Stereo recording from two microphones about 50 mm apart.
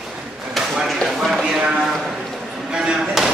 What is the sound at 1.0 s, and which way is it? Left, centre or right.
Clip-clop, centre.